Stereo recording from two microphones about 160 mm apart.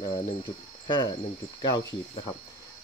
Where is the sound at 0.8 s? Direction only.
30° left (ahead or behind).